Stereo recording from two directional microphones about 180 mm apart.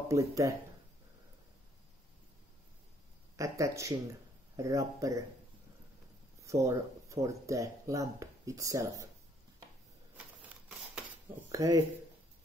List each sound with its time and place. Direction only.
0.1 s speech: 15° right (ahead or behind)
3.3 s speech: 20° right (ahead or behind)
6.4 s speech: 15° right (ahead or behind)
11.5 s speech: 20° right (ahead or behind)